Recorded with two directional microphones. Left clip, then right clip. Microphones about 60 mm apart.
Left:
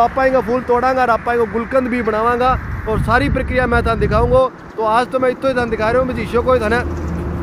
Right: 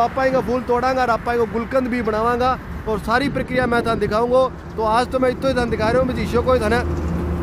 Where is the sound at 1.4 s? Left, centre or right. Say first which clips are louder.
Left 3 dB; centre.